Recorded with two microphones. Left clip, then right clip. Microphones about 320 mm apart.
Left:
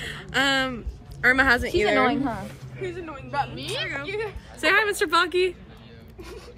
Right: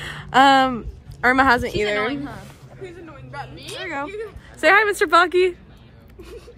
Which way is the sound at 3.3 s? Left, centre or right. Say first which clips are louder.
Left 6 dB; left.